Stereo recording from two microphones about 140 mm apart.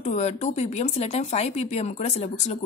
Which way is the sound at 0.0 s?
55° left (ahead or behind).